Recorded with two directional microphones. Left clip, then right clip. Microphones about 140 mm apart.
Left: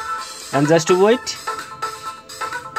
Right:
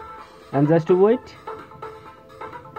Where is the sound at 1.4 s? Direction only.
30° left (ahead or behind).